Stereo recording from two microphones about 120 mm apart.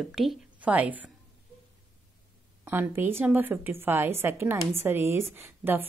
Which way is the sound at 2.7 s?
15° right (ahead or behind).